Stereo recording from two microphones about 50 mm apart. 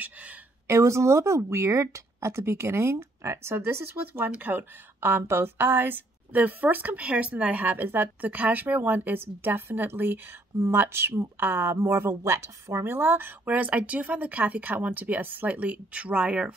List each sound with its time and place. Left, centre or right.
0.0 s a sound: right
0.7 s a woman's voice: right
7.0 s speech: right
8.3 s a woman's voice: right
12.8 s a woman's voice: right
13.5 s speech: right